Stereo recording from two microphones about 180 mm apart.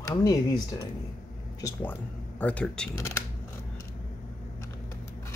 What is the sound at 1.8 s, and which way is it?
Speech, 10° left (ahead or behind).